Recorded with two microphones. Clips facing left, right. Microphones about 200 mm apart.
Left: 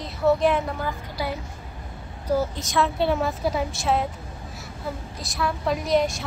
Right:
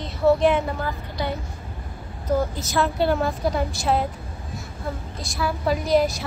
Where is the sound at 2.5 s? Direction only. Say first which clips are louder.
Right 1 dB; centre (ahead or behind).